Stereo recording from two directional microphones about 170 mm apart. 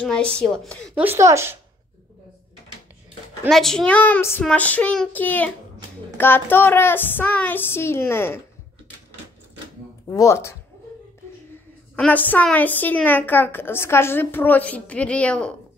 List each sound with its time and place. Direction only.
0.0 s a woman's voice: 5° left (ahead or behind)
0.9 s speech: 15° right (ahead or behind)
3.4 s a woman's voice: centre (ahead or behind)
10.0 s a woman's voice: 15° left (ahead or behind)
11.9 s a woman's voice: 10° left (ahead or behind)